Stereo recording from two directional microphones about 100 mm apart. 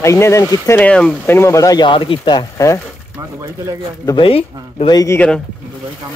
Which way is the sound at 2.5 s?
30° left (ahead or behind).